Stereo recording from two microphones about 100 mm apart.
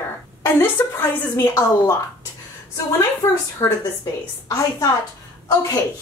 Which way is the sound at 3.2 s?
30° left (ahead or behind).